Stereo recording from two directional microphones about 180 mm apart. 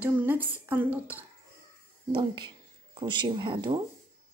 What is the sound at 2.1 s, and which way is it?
Speech, 25° right (ahead or behind).